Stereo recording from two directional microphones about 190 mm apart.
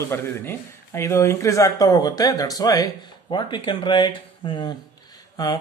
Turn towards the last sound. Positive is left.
turn(degrees=20)  # may be behind; listen again after turning